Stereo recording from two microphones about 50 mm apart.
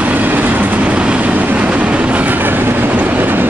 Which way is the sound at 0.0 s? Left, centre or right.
Right.